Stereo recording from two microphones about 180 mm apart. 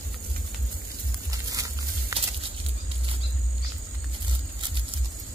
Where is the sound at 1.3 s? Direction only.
20° right (ahead or behind).